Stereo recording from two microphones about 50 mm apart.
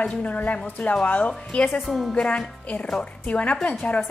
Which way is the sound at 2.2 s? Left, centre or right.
Left.